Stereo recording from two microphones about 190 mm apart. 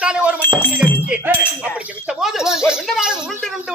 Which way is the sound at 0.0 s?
5° right (ahead or behind).